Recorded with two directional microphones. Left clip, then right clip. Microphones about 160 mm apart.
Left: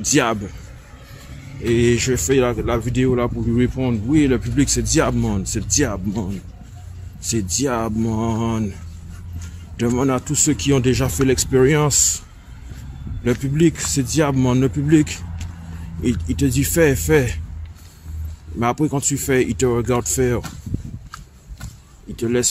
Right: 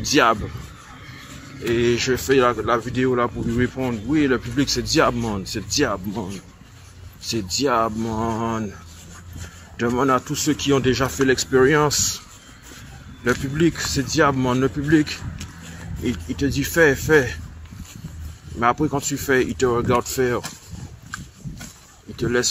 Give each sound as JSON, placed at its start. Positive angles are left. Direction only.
{"t": 0.0, "sound": "speech", "side_deg": 20}
{"t": 1.7, "sound": "speech", "side_deg": 25}
{"t": 7.2, "sound": "speech", "side_deg": 20}
{"t": 8.1, "sound": "speech", "side_deg": 30}
{"t": 9.9, "sound": "speech", "side_deg": 20}
{"t": 13.2, "sound": "speech", "side_deg": 20}
{"t": 18.6, "sound": "speech", "side_deg": 30}
{"t": 22.2, "sound": "speech", "side_deg": 25}